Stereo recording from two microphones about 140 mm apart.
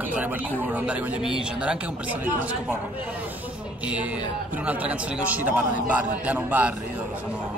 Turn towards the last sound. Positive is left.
turn(degrees=-10)  # may be behind; listen again after turning